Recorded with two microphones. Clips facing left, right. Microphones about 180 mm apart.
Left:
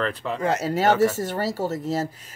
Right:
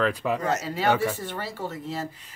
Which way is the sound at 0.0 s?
10° right (ahead or behind).